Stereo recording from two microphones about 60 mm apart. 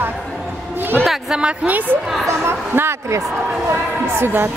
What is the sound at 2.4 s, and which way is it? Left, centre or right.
Speech, right.